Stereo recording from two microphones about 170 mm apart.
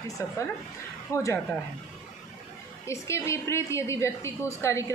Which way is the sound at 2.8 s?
15° left (ahead or behind).